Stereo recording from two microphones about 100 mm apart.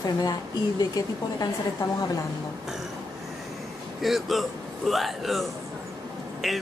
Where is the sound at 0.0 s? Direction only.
40° left (ahead or behind).